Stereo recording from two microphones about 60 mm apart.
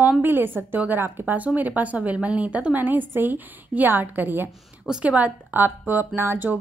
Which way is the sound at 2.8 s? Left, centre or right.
Right.